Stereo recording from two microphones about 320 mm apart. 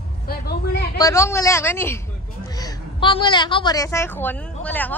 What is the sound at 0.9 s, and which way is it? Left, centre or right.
A woman's voice, centre.